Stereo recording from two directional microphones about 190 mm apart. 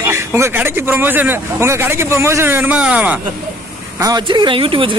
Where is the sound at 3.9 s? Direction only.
20° right (ahead or behind).